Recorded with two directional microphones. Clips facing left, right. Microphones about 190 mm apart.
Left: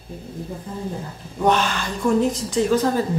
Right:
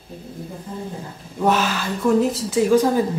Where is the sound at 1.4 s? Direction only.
5° right (ahead or behind).